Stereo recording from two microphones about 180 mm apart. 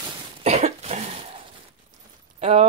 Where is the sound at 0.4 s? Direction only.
35° right (ahead or behind).